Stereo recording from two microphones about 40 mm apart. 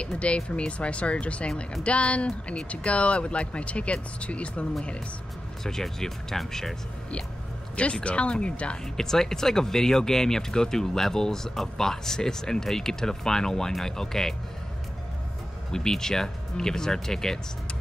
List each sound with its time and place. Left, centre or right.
0.0 s speech: left
5.6 s speech: centre
7.7 s speech: left
8.9 s speech: centre
15.7 s speech: centre